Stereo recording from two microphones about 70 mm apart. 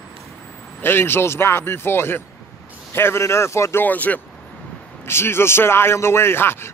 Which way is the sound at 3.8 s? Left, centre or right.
Left.